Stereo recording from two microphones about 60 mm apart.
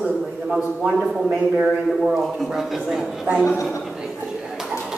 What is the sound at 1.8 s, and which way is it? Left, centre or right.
A man's voice, centre.